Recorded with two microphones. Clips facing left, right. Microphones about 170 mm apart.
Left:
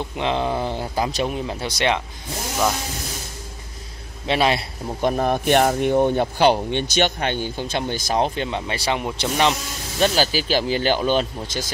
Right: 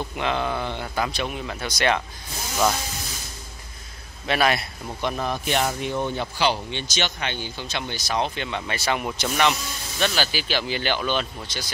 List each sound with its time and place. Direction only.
0.1 s speech: 25° left (ahead or behind)
4.3 s speech: 25° left (ahead or behind)
5.0 s speech: 50° left (ahead or behind)